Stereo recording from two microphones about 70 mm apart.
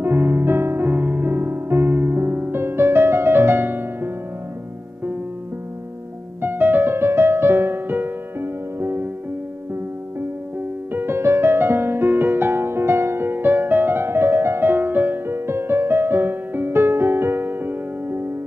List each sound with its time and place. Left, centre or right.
0.0 s music: right
6.4 s music: right
10.9 s music: right